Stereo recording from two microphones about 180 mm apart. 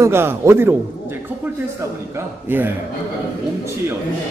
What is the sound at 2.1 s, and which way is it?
Speech, 10° right (ahead or behind).